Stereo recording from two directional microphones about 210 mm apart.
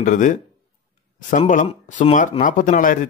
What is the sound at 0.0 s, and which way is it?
Speech, 35° left (ahead or behind).